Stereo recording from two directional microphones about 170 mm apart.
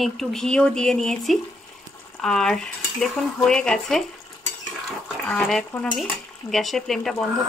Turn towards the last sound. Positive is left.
turn(degrees=0)  # may be behind; listen again after turning